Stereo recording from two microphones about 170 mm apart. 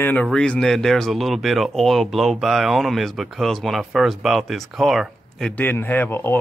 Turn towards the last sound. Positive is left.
turn(degrees=15)  # may be behind; listen again after turning